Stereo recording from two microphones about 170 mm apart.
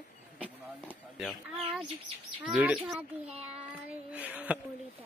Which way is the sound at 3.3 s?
35° right (ahead or behind).